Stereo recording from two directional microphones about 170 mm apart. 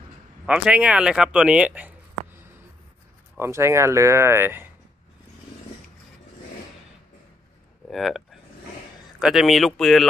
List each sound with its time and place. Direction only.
0.5 s speech: 5° right (ahead or behind)
7.9 s speech: centre (ahead or behind)